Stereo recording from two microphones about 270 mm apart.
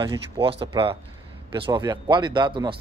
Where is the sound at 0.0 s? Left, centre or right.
Centre.